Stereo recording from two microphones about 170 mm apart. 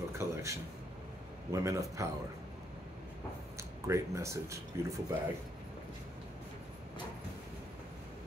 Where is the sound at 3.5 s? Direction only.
15° right (ahead or behind).